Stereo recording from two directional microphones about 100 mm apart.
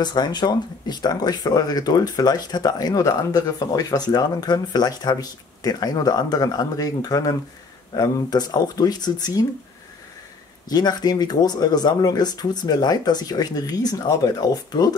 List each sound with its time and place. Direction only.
0.0 s speech: 45° left (ahead or behind)
10.7 s speech: 45° left (ahead or behind)